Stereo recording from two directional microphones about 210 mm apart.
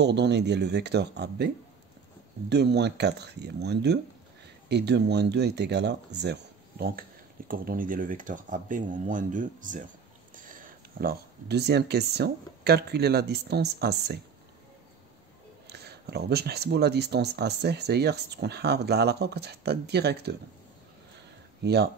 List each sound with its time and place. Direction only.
0.0 s speech: 55° right (ahead or behind)
2.5 s speech: 55° right (ahead or behind)
15.6 s speech: 50° right (ahead or behind)